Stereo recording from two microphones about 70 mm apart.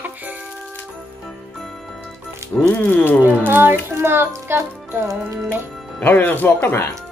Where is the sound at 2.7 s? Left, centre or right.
Left.